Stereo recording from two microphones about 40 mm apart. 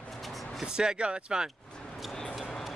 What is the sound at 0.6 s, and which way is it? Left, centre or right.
Speech, centre.